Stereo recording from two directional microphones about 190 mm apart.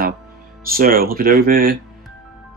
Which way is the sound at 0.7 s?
50° right (ahead or behind).